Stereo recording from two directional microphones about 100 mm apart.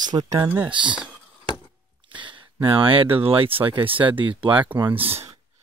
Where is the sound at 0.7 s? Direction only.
50° right (ahead or behind).